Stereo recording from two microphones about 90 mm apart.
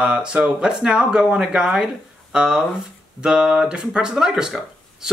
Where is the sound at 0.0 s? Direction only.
10° right (ahead or behind).